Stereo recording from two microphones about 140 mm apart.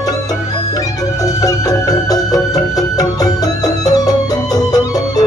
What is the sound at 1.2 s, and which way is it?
Music, 25° left (ahead or behind).